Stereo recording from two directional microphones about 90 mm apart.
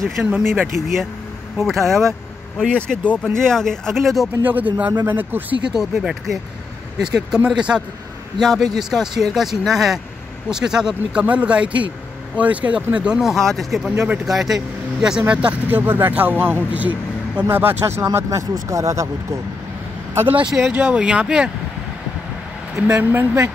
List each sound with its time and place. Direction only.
0.0 s speech: centre (ahead or behind)
1.6 s speech: centre (ahead or behind)
2.7 s speech: 15° left (ahead or behind)
4.4 s speech: 20° right (ahead or behind)
5.7 s speech: 5° right (ahead or behind); by 19.0 s 35° right (ahead or behind)
20.4 s speech: 5° right (ahead or behind)
22.8 s speech: 10° right (ahead or behind)
23.1 s speech: 25° right (ahead or behind)